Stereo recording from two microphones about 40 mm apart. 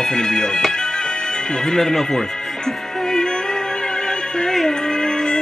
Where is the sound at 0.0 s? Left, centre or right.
Centre.